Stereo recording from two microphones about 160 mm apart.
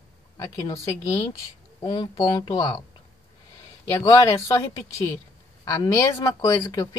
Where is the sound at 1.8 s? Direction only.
30° left (ahead or behind).